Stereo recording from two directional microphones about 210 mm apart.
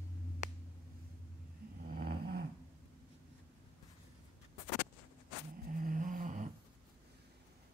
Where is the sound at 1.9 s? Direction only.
50° right (ahead or behind).